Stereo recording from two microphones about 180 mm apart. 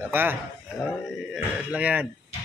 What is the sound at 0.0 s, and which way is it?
Speech, 10° right (ahead or behind).